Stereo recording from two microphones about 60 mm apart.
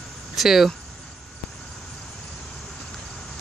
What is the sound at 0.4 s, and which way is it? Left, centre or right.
Speech, centre.